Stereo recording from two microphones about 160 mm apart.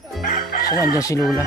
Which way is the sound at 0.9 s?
20° left (ahead or behind).